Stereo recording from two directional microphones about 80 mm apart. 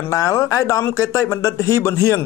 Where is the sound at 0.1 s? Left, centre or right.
Left.